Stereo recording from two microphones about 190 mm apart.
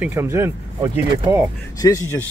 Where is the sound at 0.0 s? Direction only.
15° right (ahead or behind).